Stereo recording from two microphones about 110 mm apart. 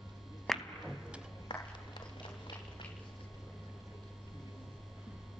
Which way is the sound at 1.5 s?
40° left (ahead or behind).